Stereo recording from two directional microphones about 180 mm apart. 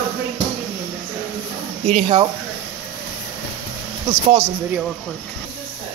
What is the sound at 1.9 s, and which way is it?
Speech, 30° right (ahead or behind).